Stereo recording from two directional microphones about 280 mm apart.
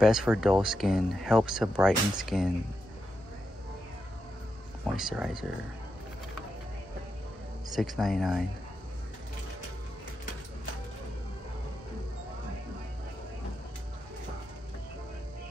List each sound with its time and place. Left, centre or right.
0.0 s speech: centre
4.9 s speech: centre
7.7 s speech: centre